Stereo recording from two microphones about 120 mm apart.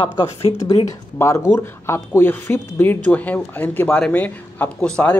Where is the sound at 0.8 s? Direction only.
25° left (ahead or behind).